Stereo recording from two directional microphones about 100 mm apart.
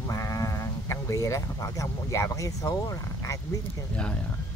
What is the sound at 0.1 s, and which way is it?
Speech, 35° left (ahead or behind).